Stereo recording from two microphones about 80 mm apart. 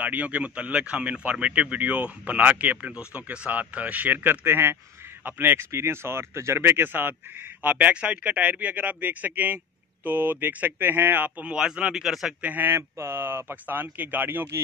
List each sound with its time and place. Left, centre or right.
0.0 s speech: centre
12.4 s speech: right